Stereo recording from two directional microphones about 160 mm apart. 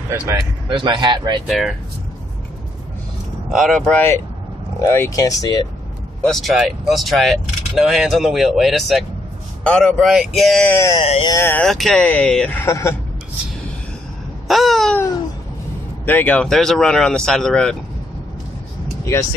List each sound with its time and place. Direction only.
0.1 s speech: 15° right (ahead or behind)
0.7 s speech: 30° right (ahead or behind)
1.5 s speech: centre (ahead or behind)
3.5 s speech: centre (ahead or behind); by 5.7 s 25° left (ahead or behind)
6.2 s speech: centre (ahead or behind)
11.6 s speech: centre (ahead or behind)
12.6 s speech: 20° left (ahead or behind)
14.5 s babbling: centre (ahead or behind)
16.1 s speech: 10° left (ahead or behind)